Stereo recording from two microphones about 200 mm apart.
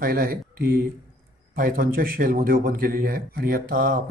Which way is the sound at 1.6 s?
45° right (ahead or behind).